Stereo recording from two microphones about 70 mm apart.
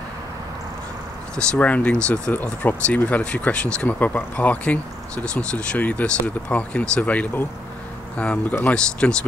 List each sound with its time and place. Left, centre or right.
1.3 s speech: centre